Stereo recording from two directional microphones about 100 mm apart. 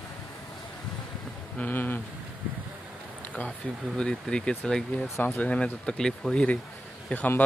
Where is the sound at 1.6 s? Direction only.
20° left (ahead or behind).